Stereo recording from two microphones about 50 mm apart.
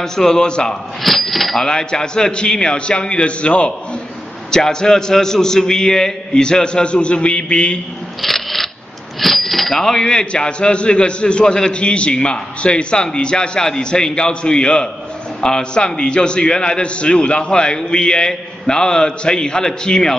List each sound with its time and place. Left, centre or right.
0.0 s speech: centre
1.0 s speech: centre; by 3.7 s left
4.5 s speech: centre
8.2 s shuffling cards: centre
9.2 s speech: centre